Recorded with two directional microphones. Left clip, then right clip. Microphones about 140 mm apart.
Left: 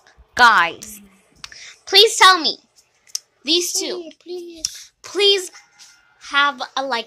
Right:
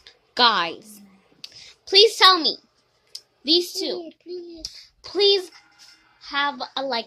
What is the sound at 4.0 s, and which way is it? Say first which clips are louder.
Speech: left 3 dB; 10° left (ahead or behind).